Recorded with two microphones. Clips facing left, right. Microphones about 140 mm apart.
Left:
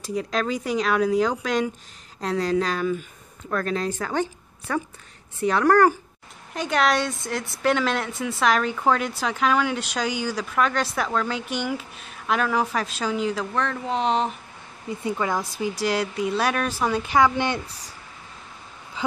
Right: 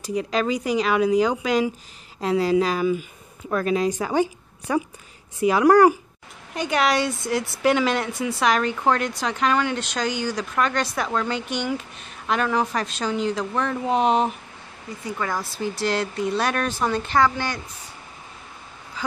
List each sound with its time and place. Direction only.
0.0 s speech: centre (ahead or behind)
6.5 s speech: centre (ahead or behind)
13.6 s speech: 10° right (ahead or behind)
15.0 s speech: 20° left (ahead or behind)
19.0 s a sound: 25° left (ahead or behind)